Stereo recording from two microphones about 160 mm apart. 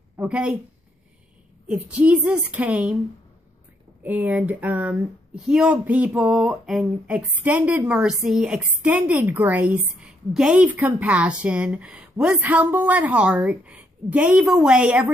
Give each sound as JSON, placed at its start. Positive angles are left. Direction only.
{"t": 0.2, "sound": "a woman's voice", "side_deg": -5}
{"t": 1.7, "sound": "speech", "side_deg": -5}
{"t": 4.0, "sound": "speech", "side_deg": -10}